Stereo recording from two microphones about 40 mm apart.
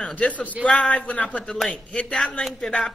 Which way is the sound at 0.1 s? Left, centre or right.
Left.